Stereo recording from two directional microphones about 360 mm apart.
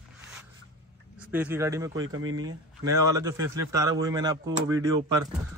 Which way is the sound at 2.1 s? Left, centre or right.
Right.